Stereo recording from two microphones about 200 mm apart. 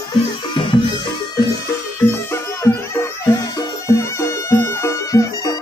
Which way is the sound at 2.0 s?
15° left (ahead or behind).